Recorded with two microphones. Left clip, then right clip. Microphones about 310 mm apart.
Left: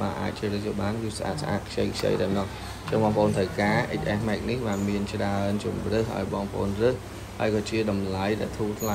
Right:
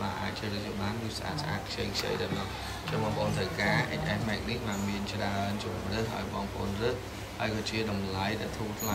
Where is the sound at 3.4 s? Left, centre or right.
Centre.